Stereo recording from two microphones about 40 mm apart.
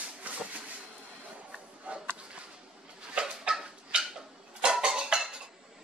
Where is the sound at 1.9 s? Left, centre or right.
Right.